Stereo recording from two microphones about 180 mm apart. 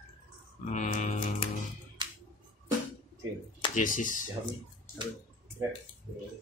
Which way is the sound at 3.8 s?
45° left (ahead or behind).